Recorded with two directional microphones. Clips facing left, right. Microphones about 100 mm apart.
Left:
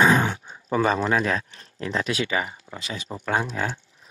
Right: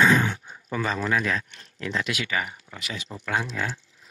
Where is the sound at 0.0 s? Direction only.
30° left (ahead or behind).